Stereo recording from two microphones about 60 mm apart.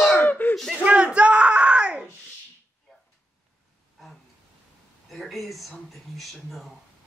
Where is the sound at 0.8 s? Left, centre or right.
Centre.